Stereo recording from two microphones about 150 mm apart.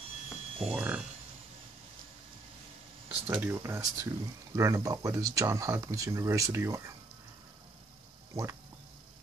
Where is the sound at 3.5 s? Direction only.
20° right (ahead or behind).